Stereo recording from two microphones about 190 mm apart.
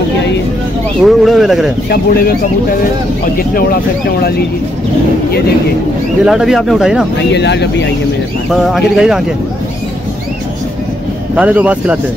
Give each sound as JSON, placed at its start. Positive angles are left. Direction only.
{"t": 1.0, "sound": "speech", "side_deg": 0}
{"t": 1.9, "sound": "speech", "side_deg": 50}
{"t": 3.3, "sound": "speech", "side_deg": 50}
{"t": 6.2, "sound": "speech", "side_deg": 0}
{"t": 7.3, "sound": "speech", "side_deg": 65}
{"t": 8.5, "sound": "speech", "side_deg": 0}
{"t": 11.3, "sound": "speech", "side_deg": -10}